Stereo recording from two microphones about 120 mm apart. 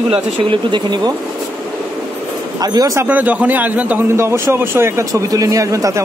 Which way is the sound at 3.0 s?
15° right (ahead or behind).